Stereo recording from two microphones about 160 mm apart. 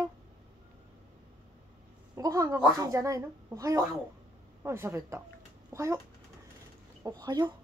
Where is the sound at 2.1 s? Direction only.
20° right (ahead or behind).